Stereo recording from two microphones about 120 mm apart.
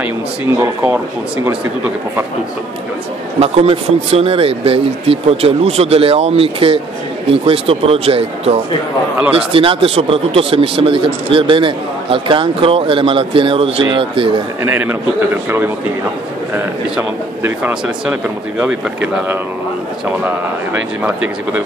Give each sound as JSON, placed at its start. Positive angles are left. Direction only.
{"t": 3.3, "sound": "speech", "side_deg": -55}
{"t": 14.6, "sound": "speech", "side_deg": -15}
{"t": 16.9, "sound": "speech", "side_deg": -10}